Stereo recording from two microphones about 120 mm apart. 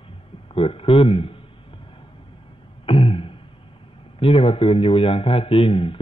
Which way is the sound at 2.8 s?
50° left (ahead or behind).